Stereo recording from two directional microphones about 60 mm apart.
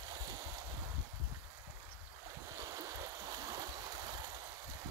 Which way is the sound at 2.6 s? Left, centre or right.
Right.